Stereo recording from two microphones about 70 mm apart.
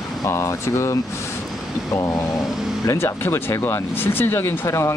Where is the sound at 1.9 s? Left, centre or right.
Left.